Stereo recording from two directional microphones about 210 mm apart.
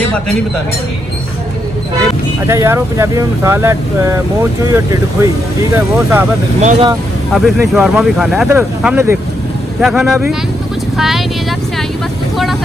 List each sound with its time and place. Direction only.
2.4 s speech: 15° right (ahead or behind)
6.6 s speech: 35° right (ahead or behind)
7.3 s speech: centre (ahead or behind)
9.8 s speech: centre (ahead or behind)